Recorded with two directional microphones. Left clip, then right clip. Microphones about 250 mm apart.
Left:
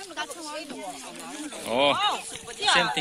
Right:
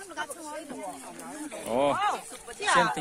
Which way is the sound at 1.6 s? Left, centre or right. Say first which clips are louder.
Left 3 dB; centre.